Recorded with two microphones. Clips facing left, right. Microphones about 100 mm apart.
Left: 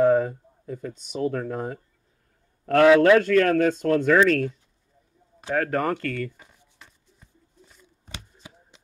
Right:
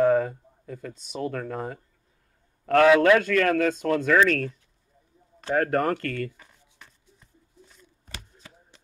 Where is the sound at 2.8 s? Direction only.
25° left (ahead or behind).